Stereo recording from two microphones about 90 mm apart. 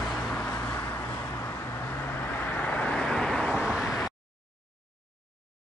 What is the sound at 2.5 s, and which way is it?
Vehicle, 15° left (ahead or behind).